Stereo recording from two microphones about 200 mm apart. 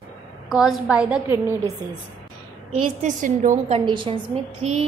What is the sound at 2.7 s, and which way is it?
A woman's voice, 35° right (ahead or behind).